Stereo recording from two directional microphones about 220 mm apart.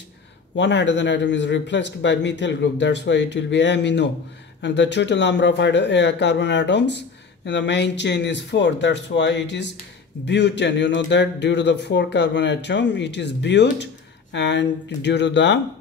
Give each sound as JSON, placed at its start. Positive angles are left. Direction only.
{"t": 0.6, "sound": "speech", "side_deg": 55}